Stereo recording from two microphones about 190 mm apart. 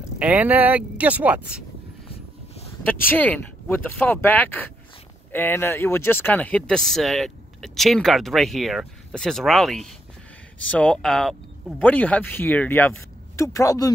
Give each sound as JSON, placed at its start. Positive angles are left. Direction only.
{"t": 0.2, "sound": "speech", "side_deg": -10}
{"t": 2.8, "sound": "speech", "side_deg": 10}